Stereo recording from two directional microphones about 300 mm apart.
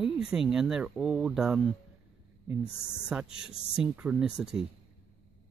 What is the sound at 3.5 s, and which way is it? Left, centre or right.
Speech, centre.